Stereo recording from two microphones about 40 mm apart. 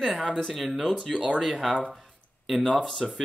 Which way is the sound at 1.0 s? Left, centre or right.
Centre.